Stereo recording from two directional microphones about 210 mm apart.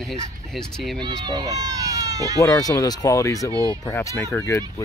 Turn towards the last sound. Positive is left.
turn(degrees=15)  # may be behind; listen again after turning